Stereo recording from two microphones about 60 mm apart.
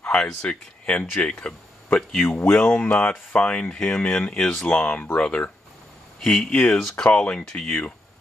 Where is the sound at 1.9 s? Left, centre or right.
Left.